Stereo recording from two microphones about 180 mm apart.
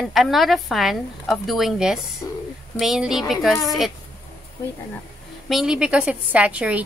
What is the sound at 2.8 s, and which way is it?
A woman's voice, centre (ahead or behind).